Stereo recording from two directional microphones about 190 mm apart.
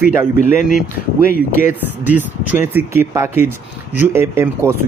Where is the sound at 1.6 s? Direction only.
10° right (ahead or behind).